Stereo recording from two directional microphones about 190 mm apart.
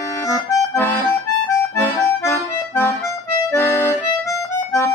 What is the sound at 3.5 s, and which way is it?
Accordion, 10° left (ahead or behind).